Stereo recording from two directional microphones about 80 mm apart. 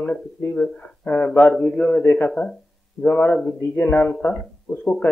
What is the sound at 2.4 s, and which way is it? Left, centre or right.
Speech, left.